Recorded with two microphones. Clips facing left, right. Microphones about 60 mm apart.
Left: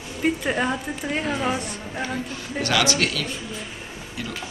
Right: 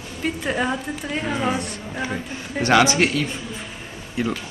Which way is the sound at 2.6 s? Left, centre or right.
Right.